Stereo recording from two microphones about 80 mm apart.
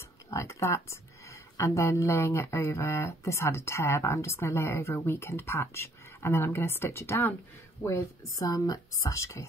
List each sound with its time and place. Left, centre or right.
0.3 s speech: left
7.8 s speech: left